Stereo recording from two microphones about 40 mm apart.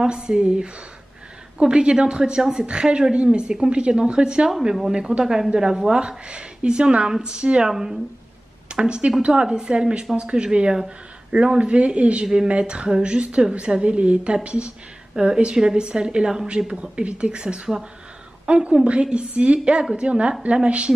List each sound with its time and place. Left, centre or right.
0.0 s a woman's voice: centre
6.0 s a woman's voice: right